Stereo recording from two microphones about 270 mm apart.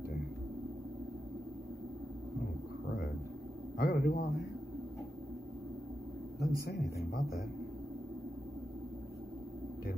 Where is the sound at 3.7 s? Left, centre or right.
Left.